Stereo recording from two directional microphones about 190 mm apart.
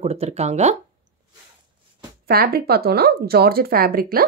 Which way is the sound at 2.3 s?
55° right (ahead or behind).